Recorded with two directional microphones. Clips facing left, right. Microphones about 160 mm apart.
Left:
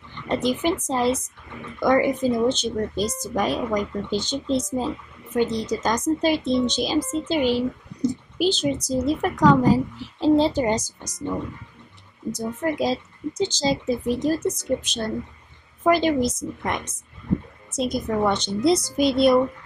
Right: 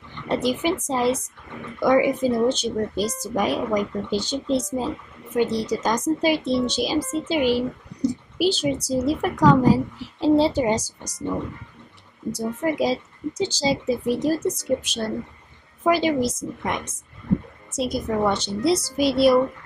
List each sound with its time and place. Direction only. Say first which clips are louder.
0.3 s speech: even; 5° right (ahead or behind)
12.3 s speech: right 1 dB; 10° right (ahead or behind)
17.6 s speech: even; 5° right (ahead or behind)